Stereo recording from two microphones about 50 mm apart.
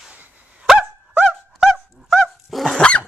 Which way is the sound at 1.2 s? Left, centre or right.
Centre.